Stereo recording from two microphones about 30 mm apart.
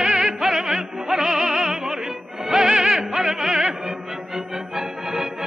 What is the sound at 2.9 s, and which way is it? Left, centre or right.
Music, centre.